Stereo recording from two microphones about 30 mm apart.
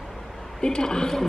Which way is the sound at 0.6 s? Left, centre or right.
Left.